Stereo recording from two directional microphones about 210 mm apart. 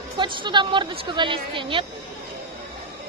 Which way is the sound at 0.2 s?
20° right (ahead or behind).